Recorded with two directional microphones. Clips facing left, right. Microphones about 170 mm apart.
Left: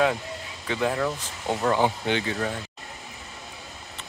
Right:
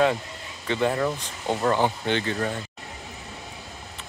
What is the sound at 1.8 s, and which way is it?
Speech, 10° left (ahead or behind).